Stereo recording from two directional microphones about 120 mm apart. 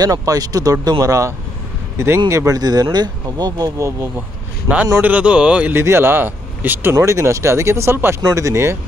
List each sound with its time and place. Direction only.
0.0 s speech: 30° right (ahead or behind)
5.0 s speech: 10° right (ahead or behind)